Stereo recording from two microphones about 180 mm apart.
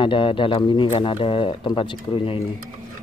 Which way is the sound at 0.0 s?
30° left (ahead or behind).